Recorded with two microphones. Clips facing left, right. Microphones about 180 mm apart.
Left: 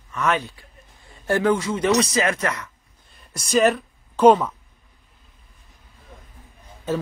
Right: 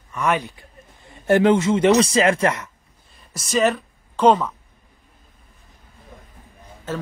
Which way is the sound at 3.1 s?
Centre (ahead or behind).